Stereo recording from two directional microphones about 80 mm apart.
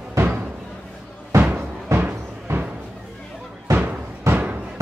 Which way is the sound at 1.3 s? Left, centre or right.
Right.